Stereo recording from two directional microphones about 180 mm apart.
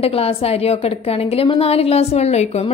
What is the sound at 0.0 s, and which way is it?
A woman's voice, 30° left (ahead or behind).